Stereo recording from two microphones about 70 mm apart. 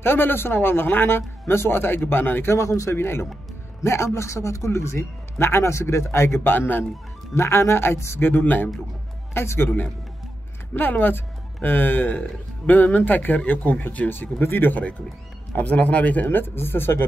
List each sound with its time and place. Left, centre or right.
0.0 s a man's voice: left
7.3 s a man's voice: left
8.3 s a man's voice: left